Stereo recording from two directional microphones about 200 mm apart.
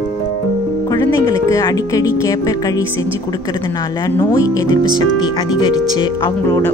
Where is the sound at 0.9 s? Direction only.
15° left (ahead or behind).